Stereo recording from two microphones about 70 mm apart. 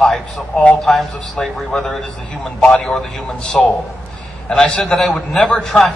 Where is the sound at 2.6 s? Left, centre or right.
Centre.